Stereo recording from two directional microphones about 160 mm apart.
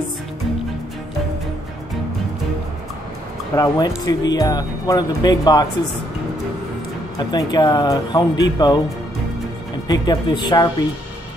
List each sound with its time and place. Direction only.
3.5 s speech: 25° left (ahead or behind)
7.2 s speech: 25° left (ahead or behind)
9.8 s speech: 25° left (ahead or behind)